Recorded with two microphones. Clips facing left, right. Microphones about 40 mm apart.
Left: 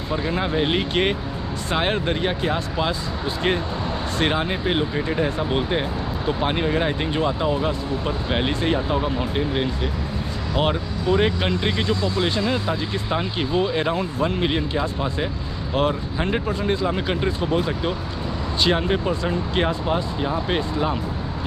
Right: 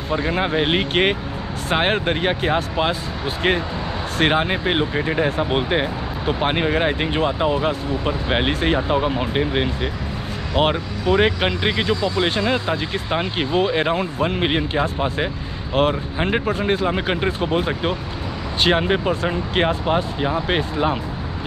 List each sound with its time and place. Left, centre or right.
0.1 s speech: right
4.2 s speech: right
12.7 s speech: right
13.1 s speech: right
16.5 s speech: right
16.8 s speech: right